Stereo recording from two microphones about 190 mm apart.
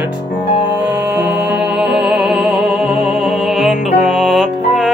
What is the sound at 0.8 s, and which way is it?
Music, 5° right (ahead or behind).